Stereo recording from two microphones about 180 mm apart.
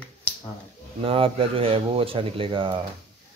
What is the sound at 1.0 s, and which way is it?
Speech, 30° right (ahead or behind).